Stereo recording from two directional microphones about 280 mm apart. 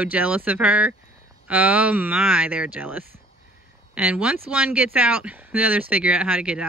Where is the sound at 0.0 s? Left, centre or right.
Centre.